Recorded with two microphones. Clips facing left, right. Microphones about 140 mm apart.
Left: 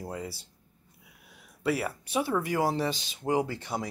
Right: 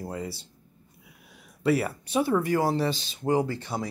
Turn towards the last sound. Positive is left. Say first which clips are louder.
# right 2 dB
turn(degrees=15)  # may be behind; listen again after turning